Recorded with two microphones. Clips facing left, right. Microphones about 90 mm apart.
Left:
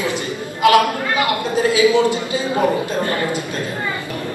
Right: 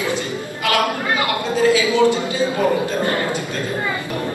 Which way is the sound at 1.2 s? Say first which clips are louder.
Left 2 dB; 20° left (ahead or behind).